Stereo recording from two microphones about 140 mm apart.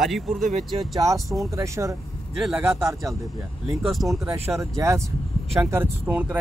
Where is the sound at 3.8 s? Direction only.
Centre (ahead or behind).